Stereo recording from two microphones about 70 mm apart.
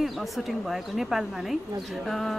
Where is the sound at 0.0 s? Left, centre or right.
Centre.